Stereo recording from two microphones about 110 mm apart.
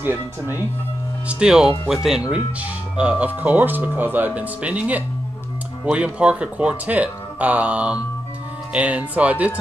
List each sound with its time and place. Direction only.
0.0 s speech: 20° right (ahead or behind)
1.4 s speech: 5° right (ahead or behind)